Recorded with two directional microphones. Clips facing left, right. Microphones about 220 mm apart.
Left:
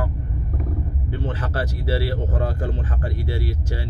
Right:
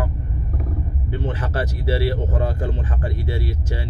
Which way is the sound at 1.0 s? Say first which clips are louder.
Right 2 dB; 20° right (ahead or behind).